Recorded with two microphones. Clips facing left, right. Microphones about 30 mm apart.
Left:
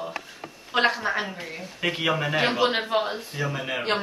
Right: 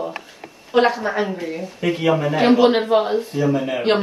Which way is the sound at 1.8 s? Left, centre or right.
Centre.